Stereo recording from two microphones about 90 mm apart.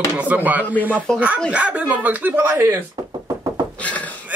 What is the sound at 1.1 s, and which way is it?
Speech, 5° left (ahead or behind).